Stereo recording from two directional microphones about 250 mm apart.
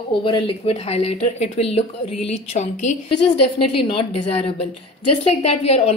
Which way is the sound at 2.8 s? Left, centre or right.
Left.